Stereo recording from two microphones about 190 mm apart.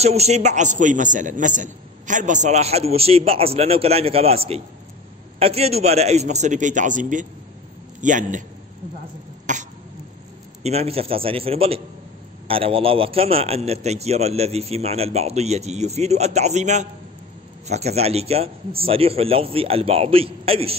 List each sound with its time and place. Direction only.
0.0 s a man's voice: 35° right (ahead or behind)
9.5 s cough: 40° right (ahead or behind)
10.6 s a man's voice: 35° right (ahead or behind)